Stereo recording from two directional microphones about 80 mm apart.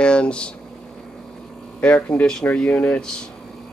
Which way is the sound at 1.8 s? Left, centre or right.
Centre.